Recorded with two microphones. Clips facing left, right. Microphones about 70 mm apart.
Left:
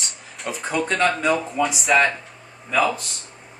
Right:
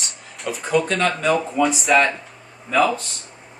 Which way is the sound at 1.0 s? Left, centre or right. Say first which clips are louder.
Right 1 dB; centre.